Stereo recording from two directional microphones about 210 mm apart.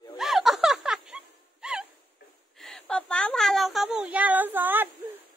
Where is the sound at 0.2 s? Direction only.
Centre (ahead or behind).